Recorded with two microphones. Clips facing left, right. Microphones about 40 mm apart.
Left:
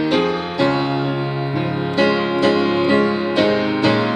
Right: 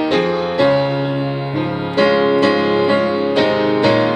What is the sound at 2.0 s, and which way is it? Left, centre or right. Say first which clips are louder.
Music: right 4 dB; centre.